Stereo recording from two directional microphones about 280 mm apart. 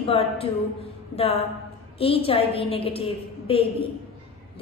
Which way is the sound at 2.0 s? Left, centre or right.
Centre.